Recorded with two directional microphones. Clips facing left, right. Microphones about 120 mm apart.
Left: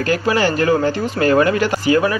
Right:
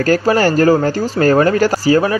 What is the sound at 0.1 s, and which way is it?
Speech, 40° right (ahead or behind).